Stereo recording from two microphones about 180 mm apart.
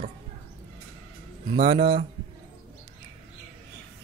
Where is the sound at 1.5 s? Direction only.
35° right (ahead or behind).